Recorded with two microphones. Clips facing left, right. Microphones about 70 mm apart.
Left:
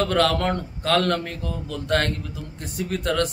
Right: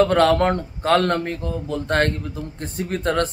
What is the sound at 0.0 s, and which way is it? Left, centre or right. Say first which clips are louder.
Speech: right 5 dB; right.